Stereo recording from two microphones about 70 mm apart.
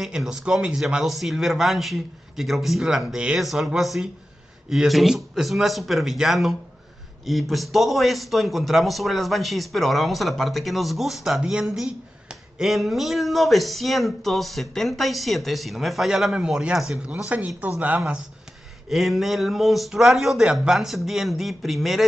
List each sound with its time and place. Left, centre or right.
0.0 s a man's voice: centre
3.3 s a man's voice: centre
17.6 s speech: right
18.9 s a man's voice: centre